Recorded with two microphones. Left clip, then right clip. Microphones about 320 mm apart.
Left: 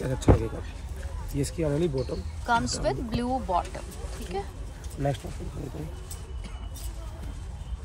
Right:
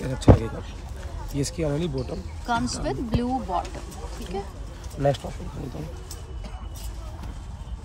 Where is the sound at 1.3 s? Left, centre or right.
Centre.